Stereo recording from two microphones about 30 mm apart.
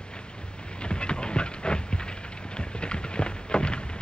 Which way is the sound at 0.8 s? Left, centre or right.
Left.